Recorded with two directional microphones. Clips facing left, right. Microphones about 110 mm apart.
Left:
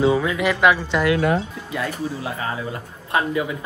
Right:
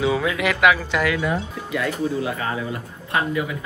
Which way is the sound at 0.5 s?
25° left (ahead or behind).